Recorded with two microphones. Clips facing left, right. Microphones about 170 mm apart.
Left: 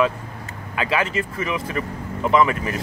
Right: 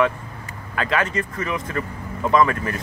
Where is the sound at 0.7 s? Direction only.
10° left (ahead or behind).